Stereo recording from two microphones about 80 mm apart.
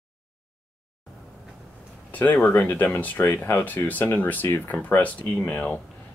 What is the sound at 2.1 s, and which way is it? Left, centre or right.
Speech, left.